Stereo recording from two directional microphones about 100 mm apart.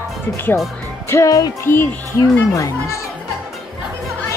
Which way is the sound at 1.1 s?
35° left (ahead or behind).